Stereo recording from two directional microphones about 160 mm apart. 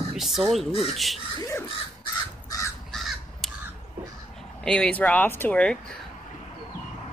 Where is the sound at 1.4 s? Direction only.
15° left (ahead or behind).